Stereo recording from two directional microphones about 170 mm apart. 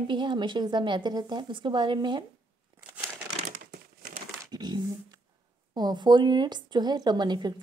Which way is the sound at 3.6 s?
60° right (ahead or behind).